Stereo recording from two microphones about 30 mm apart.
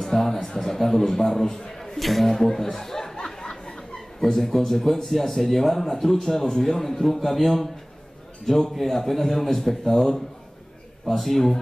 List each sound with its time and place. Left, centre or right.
0.0 s a sound: centre
0.6 s a man's voice: centre
2.0 s a man's voice: centre
2.2 s speech: centre
3.3 s a sound: left
4.2 s a man's voice: centre